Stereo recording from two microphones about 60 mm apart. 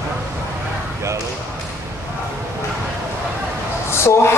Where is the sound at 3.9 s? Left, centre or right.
Left.